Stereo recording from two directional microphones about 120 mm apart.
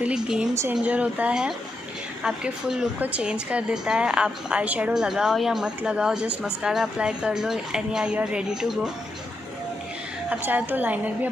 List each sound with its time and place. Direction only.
0.0 s a woman's voice: 5° right (ahead or behind)
10.3 s a woman's voice: 15° right (ahead or behind)